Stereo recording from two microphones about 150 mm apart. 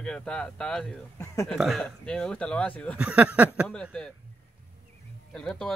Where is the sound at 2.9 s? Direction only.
10° right (ahead or behind).